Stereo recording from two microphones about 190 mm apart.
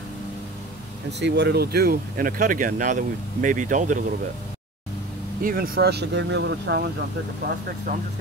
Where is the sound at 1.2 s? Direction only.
65° right (ahead or behind); by 4.0 s 40° right (ahead or behind).